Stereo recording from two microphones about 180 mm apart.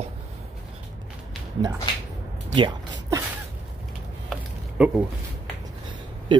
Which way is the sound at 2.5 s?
20° right (ahead or behind).